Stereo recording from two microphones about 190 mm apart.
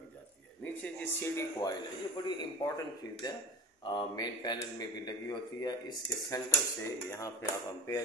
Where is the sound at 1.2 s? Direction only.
15° left (ahead or behind).